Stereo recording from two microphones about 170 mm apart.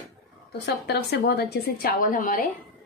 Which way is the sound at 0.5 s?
75° left (ahead or behind).